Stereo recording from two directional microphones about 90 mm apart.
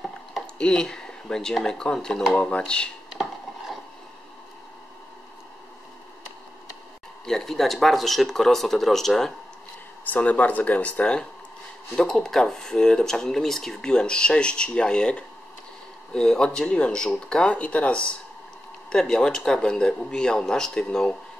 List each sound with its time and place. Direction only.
0.6 s speech: 10° left (ahead or behind)
3.1 s chopping: 5° right (ahead or behind)
7.2 s speech: 5° left (ahead or behind)
10.0 s speech: 15° left (ahead or behind)